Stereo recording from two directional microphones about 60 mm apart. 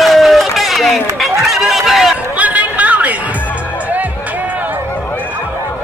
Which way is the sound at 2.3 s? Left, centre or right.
Right.